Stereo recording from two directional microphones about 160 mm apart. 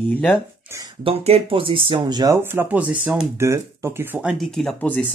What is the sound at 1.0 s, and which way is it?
Speech, 40° right (ahead or behind).